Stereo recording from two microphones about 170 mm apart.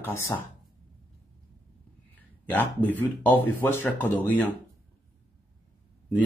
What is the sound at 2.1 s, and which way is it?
Speech, 10° left (ahead or behind).